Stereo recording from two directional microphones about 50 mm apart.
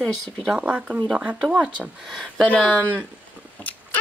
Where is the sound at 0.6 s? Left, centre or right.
Right.